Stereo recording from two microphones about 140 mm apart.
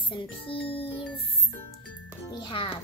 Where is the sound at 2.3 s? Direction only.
35° left (ahead or behind).